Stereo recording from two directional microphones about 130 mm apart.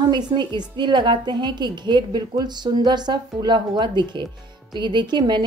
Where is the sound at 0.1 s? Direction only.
35° right (ahead or behind).